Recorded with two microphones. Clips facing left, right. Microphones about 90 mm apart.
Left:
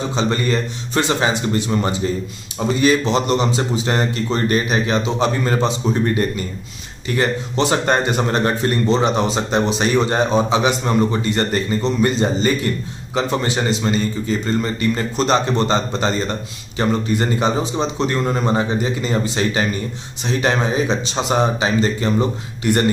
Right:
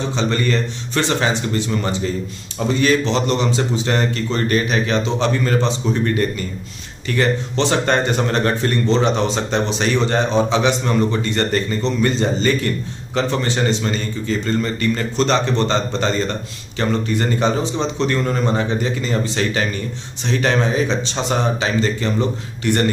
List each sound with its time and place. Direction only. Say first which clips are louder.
0.1 s speech: left 1 dB; 15° left (ahead or behind)
3.1 s speech: left 1 dB; 10° left (ahead or behind)